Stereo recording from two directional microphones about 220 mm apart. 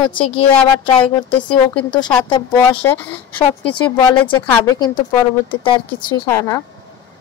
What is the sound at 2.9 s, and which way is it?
Speech, 10° left (ahead or behind).